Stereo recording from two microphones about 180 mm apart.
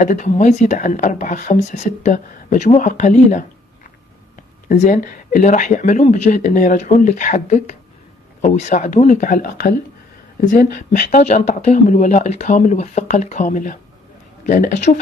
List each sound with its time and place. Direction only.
0.0 s speech: 45° left (ahead or behind)
4.6 s speech: 45° left (ahead or behind)